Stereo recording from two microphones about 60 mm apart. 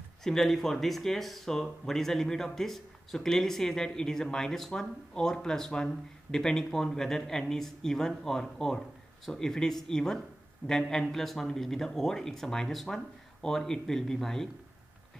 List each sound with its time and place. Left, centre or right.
0.2 s speech: centre